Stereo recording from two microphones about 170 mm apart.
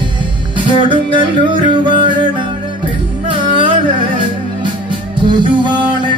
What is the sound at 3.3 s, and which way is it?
Music, 30° right (ahead or behind).